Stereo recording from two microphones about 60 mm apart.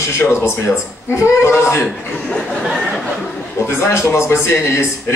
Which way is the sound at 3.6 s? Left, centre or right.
Left.